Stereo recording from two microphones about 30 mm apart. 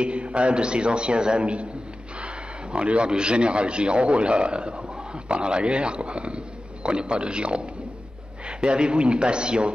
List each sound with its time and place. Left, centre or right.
0.0 s a man's voice: right
2.2 s a sound: right
3.1 s a man's voice: right